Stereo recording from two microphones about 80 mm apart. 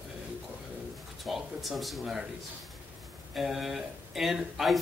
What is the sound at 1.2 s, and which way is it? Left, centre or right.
Speech, centre.